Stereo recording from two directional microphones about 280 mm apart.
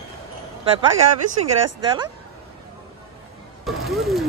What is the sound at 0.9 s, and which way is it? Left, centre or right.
Speech, right.